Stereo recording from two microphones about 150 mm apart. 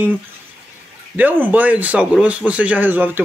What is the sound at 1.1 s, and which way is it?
Speech, 10° right (ahead or behind).